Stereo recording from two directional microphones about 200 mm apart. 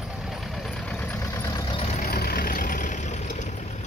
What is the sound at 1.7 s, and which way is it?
Vehicle, 30° left (ahead or behind).